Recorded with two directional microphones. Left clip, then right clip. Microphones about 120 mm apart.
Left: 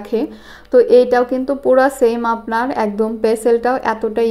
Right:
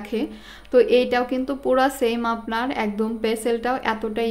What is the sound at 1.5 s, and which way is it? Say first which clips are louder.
A woman's voice: left 7 dB; 10° right (ahead or behind).